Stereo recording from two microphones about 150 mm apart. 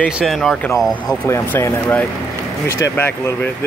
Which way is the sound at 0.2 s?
Centre (ahead or behind).